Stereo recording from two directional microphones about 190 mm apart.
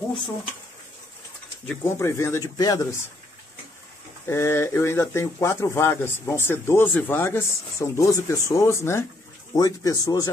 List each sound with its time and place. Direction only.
1.7 s speech: 15° left (ahead or behind)
4.3 s speech: 15° left (ahead or behind)